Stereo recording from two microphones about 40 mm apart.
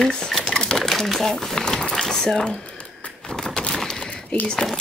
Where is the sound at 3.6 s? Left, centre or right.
Centre.